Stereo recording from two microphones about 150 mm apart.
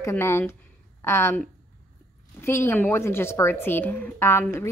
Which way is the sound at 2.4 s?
15° left (ahead or behind).